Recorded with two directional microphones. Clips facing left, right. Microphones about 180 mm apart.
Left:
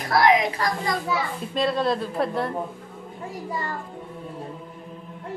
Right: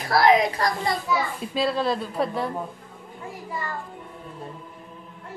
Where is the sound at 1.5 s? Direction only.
Centre (ahead or behind).